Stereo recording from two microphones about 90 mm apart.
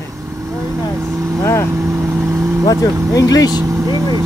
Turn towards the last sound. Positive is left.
turn(degrees=55)  # may be behind; listen again after turning